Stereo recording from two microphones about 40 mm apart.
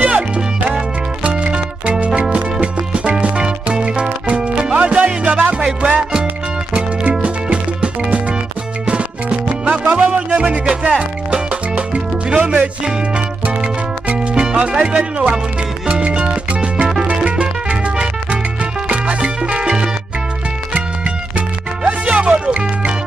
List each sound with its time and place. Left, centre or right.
0.0 s music: right
9.9 s music: right
21.4 s music: right